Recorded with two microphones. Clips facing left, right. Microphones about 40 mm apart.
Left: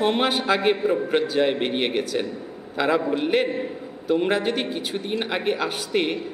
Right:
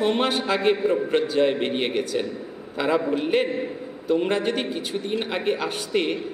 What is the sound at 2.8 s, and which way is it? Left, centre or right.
A man's voice, centre.